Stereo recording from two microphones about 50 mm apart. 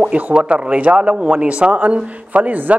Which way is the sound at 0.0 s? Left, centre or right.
Right.